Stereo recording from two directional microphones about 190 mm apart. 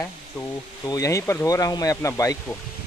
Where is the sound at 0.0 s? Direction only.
15° left (ahead or behind).